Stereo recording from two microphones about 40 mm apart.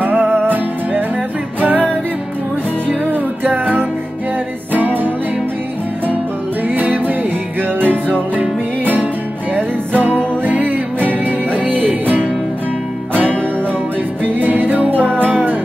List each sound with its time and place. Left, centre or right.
0.0 s music: right
1.6 s music: right
2.9 s music: right
6.7 s music: right
9.6 s music: right
14.2 s music: right